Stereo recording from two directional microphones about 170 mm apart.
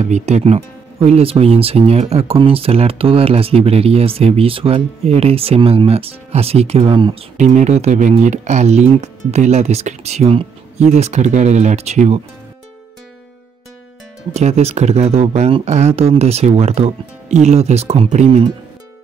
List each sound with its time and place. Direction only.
0.0 s speech: 40° right (ahead or behind)
7.3 s speech: 45° right (ahead or behind)
14.3 s speech: 40° right (ahead or behind)